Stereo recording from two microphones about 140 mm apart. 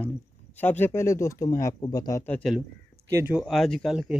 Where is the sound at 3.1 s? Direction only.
15° right (ahead or behind).